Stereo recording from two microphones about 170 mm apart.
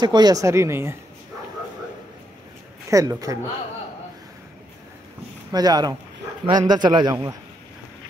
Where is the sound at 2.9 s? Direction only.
20° right (ahead or behind).